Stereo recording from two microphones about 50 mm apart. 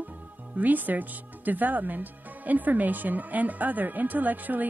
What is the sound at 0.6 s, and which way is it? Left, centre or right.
Speech, right.